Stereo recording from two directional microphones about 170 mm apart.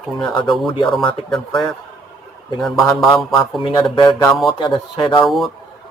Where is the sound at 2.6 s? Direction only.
Centre (ahead or behind).